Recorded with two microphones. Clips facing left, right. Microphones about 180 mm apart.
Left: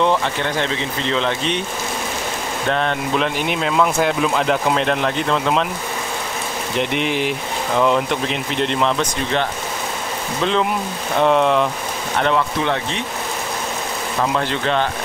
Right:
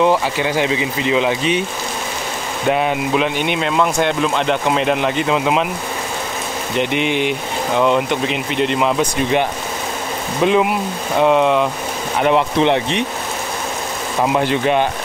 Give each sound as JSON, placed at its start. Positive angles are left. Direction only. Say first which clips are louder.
{"t": 0.0, "sound": "speech", "louder": "right 3 dB", "side_deg": -5}
{"t": 2.7, "sound": "speech", "louder": "right 3 dB", "side_deg": -10}
{"t": 6.8, "sound": "speech", "louder": "right 2 dB", "side_deg": 0}
{"t": 12.2, "sound": "speech", "louder": "right 4 dB", "side_deg": -15}
{"t": 14.2, "sound": "speech", "louder": "right 5 dB", "side_deg": -15}